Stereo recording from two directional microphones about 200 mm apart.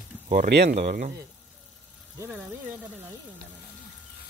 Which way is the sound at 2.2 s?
5° right (ahead or behind).